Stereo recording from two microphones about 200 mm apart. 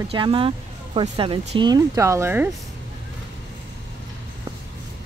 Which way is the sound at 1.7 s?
15° right (ahead or behind).